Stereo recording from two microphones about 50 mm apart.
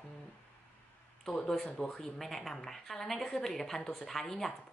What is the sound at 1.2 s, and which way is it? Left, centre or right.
Speech, centre.